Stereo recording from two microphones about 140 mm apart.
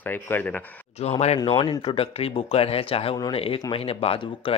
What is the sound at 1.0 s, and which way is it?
Speech, 50° left (ahead or behind).